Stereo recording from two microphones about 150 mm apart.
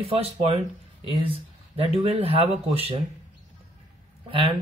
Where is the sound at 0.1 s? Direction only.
40° right (ahead or behind).